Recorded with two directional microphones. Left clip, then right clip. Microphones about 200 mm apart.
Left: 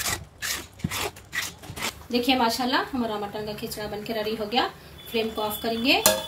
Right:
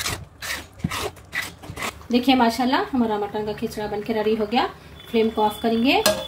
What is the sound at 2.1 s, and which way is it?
A woman's voice, 45° right (ahead or behind).